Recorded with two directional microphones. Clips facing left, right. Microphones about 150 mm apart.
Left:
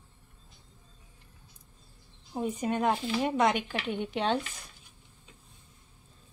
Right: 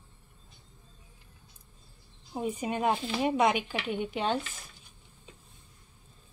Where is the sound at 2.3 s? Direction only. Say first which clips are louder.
Left 1 dB; 5° right (ahead or behind).